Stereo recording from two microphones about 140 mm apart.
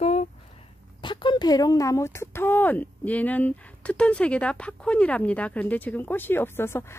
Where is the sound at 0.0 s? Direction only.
50° left (ahead or behind).